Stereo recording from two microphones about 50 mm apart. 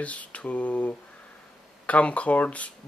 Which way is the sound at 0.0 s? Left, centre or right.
Left.